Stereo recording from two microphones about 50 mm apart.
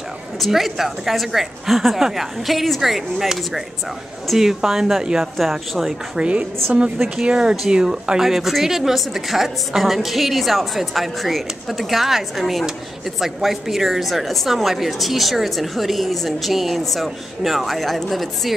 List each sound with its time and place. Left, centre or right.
0.4 s a woman's voice: centre
5.4 s speech: centre
6.1 s a woman's voice: right
7.3 s speech: centre